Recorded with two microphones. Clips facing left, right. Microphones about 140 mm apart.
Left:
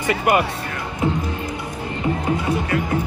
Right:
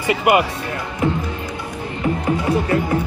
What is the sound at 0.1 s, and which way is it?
Speech, 10° right (ahead or behind).